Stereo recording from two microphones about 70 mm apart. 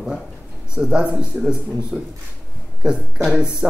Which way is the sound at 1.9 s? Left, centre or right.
Centre.